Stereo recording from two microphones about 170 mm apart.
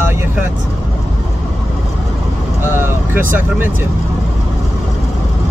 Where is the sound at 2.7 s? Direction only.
10° right (ahead or behind).